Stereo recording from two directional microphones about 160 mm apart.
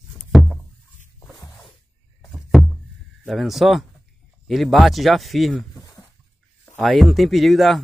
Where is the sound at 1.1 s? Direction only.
20° left (ahead or behind).